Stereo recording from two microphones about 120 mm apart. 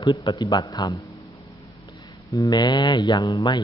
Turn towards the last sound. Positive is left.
turn(degrees=35)  # may be behind; listen again after turning